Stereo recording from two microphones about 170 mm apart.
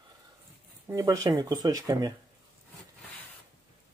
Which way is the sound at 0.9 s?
20° right (ahead or behind).